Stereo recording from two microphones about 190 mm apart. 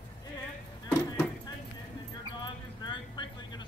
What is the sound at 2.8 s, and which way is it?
Vehicle, 25° left (ahead or behind).